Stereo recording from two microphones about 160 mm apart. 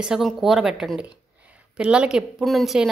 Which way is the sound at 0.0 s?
Centre (ahead or behind).